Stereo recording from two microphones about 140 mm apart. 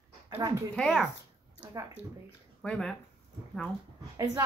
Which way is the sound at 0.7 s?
Centre (ahead or behind).